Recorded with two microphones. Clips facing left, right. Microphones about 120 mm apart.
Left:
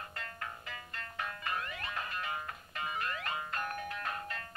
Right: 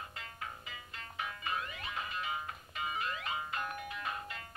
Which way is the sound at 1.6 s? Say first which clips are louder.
Left 1 dB; 55° left (ahead or behind).